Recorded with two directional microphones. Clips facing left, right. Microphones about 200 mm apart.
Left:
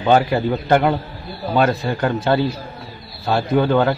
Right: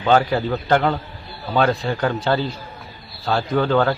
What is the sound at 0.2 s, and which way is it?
A man's voice, 10° left (ahead or behind).